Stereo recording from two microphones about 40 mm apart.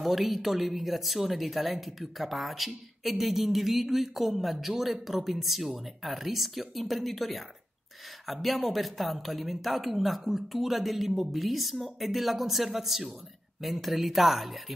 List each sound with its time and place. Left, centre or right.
0.0 s speech: centre